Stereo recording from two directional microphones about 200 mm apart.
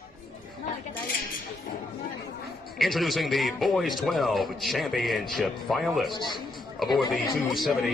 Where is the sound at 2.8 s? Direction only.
Centre (ahead or behind).